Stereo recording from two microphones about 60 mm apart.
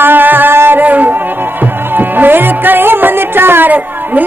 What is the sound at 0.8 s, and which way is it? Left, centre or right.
Music, right.